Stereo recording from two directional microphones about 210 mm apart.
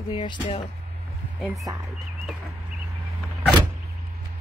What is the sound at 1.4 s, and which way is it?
Speech, centre (ahead or behind).